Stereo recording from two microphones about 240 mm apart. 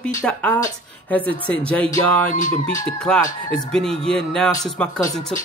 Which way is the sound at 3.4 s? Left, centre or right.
Centre.